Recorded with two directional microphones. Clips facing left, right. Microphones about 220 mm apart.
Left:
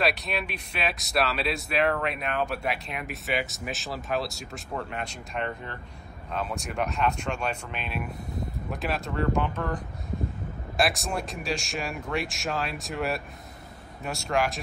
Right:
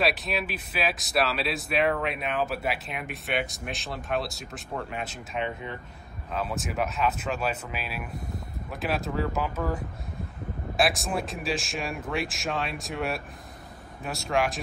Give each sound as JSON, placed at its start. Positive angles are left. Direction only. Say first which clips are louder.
{"t": 0.0, "sound": "speech", "louder": "right 1 dB", "side_deg": 0}
{"t": 10.8, "sound": "speech", "louder": "right 1 dB", "side_deg": 0}